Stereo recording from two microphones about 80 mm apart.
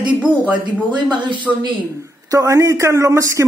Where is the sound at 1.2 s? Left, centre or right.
Right.